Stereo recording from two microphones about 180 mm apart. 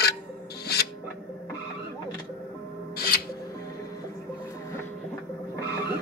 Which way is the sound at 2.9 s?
60° left (ahead or behind).